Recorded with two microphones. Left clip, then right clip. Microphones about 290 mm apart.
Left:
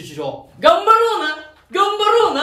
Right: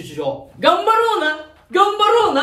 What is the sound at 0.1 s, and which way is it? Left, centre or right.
Speech, centre.